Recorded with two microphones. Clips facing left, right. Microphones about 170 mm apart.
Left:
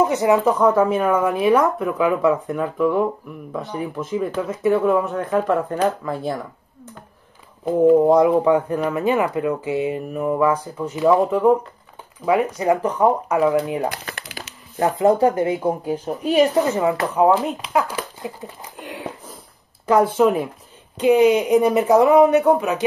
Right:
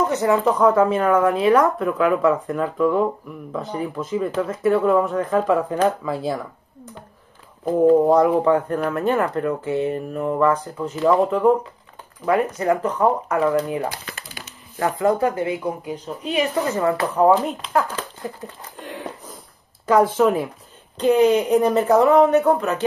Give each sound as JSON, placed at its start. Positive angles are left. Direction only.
{"t": 0.0, "sound": "speech", "side_deg": 15}
{"t": 0.4, "sound": "speech", "side_deg": 5}
{"t": 7.8, "sound": "speech", "side_deg": 10}
{"t": 12.5, "sound": "speech", "side_deg": 15}
{"t": 13.8, "sound": "crumpling", "side_deg": 70}
{"t": 14.8, "sound": "speech", "side_deg": 25}
{"t": 16.6, "sound": "speech", "side_deg": 10}